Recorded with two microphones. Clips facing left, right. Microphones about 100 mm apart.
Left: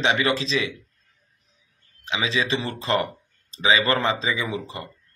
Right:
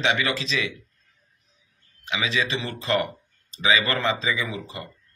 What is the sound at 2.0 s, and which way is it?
A man's voice, 30° left (ahead or behind).